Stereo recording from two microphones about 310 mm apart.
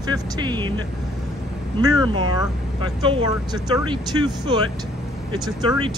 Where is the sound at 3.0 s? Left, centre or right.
Centre.